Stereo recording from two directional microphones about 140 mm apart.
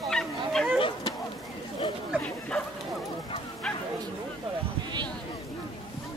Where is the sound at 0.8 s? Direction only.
35° left (ahead or behind).